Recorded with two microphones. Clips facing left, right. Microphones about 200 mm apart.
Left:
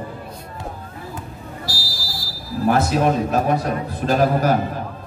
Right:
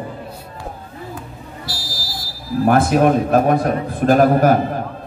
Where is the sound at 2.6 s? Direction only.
55° right (ahead or behind).